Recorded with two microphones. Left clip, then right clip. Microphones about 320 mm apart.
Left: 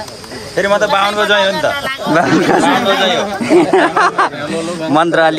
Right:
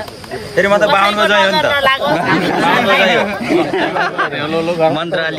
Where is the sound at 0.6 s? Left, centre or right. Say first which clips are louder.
Right 1 dB; centre.